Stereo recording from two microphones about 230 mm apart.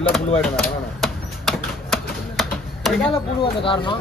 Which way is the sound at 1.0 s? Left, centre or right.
Centre.